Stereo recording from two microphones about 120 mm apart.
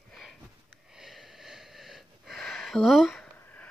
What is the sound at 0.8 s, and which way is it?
Wheeze, 5° right (ahead or behind).